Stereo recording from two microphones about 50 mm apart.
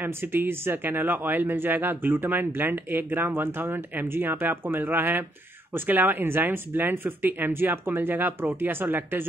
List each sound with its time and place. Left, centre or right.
0.0 s speech: right